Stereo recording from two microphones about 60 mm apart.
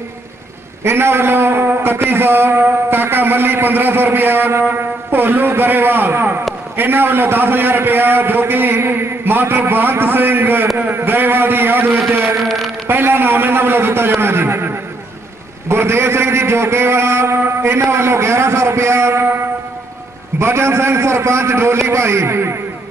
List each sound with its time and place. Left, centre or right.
0.8 s a man's voice: right
12.4 s a man's voice: centre
12.8 s a man's voice: right
15.7 s a man's voice: right
20.3 s a man's voice: right